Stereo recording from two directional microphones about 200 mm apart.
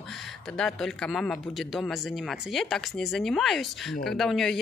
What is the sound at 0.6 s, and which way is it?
Speech, centre (ahead or behind).